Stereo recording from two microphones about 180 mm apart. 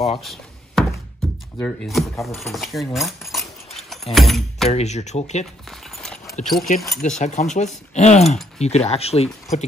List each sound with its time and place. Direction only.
0.2 s a sound: centre (ahead or behind)
1.2 s music: 5° left (ahead or behind)
1.6 s speech: 5° left (ahead or behind)
4.6 s speech: 40° left (ahead or behind)
5.7 s clip-clop: centre (ahead or behind)
6.4 s speech: centre (ahead or behind)
7.0 s speech: 40° left (ahead or behind)